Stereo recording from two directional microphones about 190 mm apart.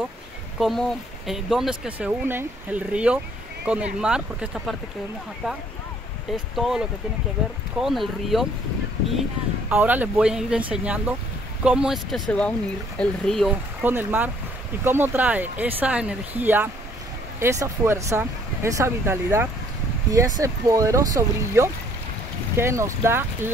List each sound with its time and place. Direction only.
0.6 s speech: centre (ahead or behind)
6.3 s speech: centre (ahead or behind)
9.7 s speech: 10° right (ahead or behind)
13.8 s speech: 10° right (ahead or behind)